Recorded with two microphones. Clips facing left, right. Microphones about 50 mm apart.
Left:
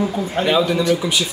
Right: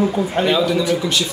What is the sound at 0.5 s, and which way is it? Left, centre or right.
Speech, centre.